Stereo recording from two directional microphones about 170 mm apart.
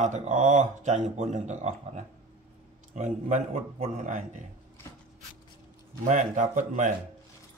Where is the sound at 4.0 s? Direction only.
50° right (ahead or behind).